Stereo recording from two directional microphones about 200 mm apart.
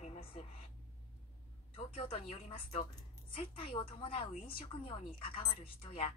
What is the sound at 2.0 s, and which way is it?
A woman's voice, 30° left (ahead or behind).